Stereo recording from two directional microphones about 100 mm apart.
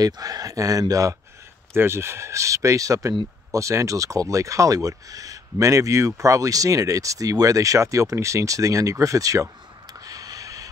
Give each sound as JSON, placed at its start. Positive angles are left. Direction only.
{"t": 0.0, "sound": "speech", "side_deg": -40}
{"t": 1.7, "sound": "speech", "side_deg": -25}
{"t": 9.9, "sound": "a sound", "side_deg": -35}